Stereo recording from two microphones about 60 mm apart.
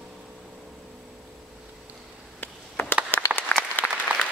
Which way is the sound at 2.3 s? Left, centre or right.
Left.